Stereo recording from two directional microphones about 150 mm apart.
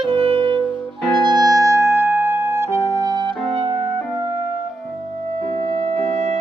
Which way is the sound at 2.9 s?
25° right (ahead or behind).